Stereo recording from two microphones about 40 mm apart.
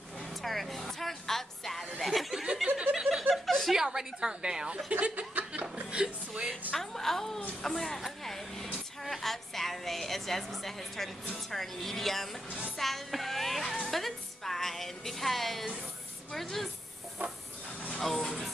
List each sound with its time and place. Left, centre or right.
0.4 s music: centre
2.0 s a sound: centre
2.4 s chuckle: centre
3.4 s chuckle: centre
3.7 s a woman's voice: centre
4.9 s speech: right
5.9 s speech: right
6.7 s a woman's voice: centre
18.0 s a woman's voice: centre